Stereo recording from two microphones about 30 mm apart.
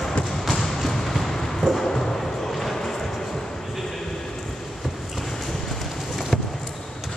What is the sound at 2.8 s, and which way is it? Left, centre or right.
Vehicle, centre.